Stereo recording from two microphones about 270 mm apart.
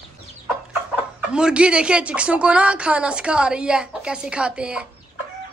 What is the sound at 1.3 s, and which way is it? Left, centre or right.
A woman's voice, centre.